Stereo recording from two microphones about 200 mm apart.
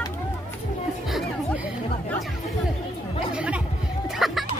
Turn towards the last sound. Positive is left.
turn(degrees=0)  # may be behind; listen again after turning